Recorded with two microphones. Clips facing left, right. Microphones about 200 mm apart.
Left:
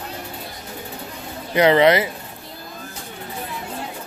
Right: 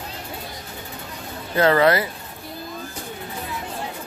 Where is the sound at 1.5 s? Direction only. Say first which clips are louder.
Left 3 dB; 15° left (ahead or behind).